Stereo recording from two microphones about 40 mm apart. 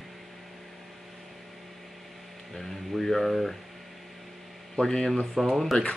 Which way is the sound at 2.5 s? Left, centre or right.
Centre.